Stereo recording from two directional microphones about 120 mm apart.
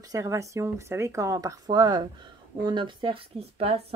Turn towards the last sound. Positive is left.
turn(degrees=-55)  # may be behind; listen again after turning